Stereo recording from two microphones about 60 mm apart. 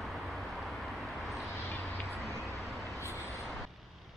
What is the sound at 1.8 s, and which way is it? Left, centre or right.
Vehicle, left.